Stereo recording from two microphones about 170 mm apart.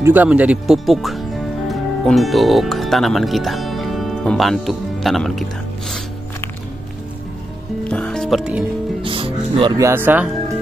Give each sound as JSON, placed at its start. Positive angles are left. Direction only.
{"t": 0.0, "sound": "speech", "side_deg": -10}
{"t": 7.9, "sound": "music", "side_deg": 5}
{"t": 9.0, "sound": "music", "side_deg": -30}
{"t": 9.8, "sound": "speech", "side_deg": -15}